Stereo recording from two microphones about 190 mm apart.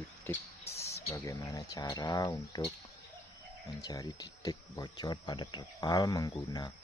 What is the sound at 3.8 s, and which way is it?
Speech, 20° left (ahead or behind).